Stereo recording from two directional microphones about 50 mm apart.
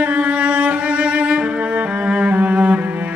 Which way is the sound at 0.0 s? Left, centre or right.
Right.